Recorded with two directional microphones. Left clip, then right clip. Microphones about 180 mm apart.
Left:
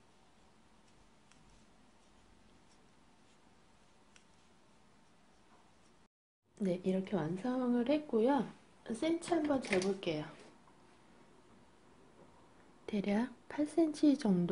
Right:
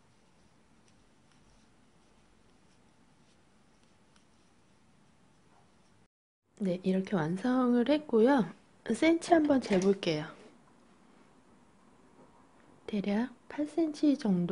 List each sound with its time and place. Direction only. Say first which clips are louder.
6.6 s speech: right 3 dB; 20° right (ahead or behind); by 10.0 s 60° right (ahead or behind)
10.0 s speech: right 6 dB; 35° right (ahead or behind)
12.8 s a woman's voice: right 3 dB; 15° right (ahead or behind)